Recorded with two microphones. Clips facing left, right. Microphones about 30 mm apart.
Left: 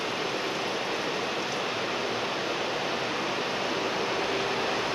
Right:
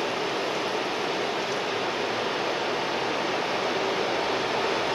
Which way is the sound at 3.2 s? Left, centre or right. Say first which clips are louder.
Right 3 dB; right.